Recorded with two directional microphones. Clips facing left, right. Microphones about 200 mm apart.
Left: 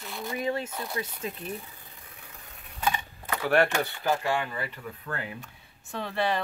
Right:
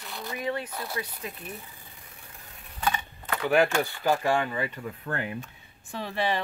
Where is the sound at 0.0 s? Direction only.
Centre (ahead or behind).